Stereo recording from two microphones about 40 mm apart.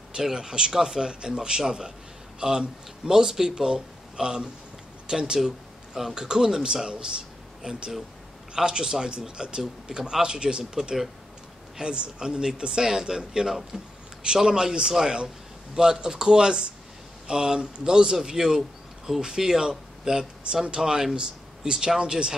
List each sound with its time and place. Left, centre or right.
0.1 s a man's voice: centre